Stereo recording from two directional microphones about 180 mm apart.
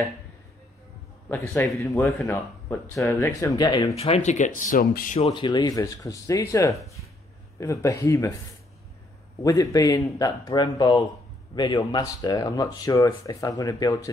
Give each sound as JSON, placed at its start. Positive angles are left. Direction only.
{"t": 1.3, "sound": "speech", "side_deg": 10}
{"t": 3.9, "sound": "speech", "side_deg": 35}
{"t": 5.2, "sound": "speech", "side_deg": 25}
{"t": 9.4, "sound": "speech", "side_deg": 20}